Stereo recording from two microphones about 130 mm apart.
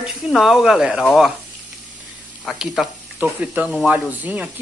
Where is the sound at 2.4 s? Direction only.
Centre (ahead or behind).